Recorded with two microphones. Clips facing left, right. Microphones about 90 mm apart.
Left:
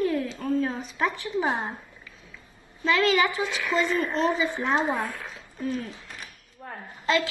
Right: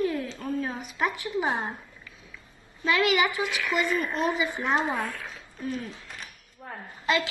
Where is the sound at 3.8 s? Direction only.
20° left (ahead or behind).